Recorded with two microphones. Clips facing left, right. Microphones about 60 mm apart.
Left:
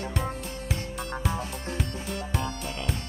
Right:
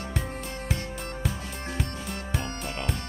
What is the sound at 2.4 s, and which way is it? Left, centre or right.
Music, right.